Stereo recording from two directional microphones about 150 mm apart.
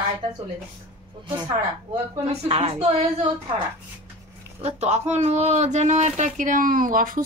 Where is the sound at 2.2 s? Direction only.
40° right (ahead or behind).